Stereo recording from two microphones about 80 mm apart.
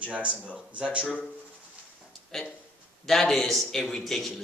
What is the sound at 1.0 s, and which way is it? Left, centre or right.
Speech, centre.